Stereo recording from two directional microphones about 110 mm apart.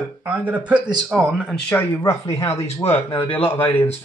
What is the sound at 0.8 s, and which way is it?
Speech, 40° right (ahead or behind).